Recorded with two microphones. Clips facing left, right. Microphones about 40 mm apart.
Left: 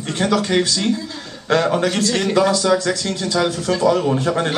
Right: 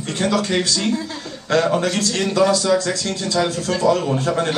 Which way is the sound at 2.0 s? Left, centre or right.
Left.